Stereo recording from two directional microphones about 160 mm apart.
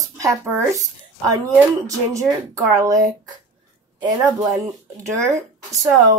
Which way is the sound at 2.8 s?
20° right (ahead or behind).